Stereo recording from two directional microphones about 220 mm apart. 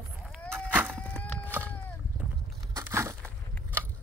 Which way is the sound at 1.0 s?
5° left (ahead or behind).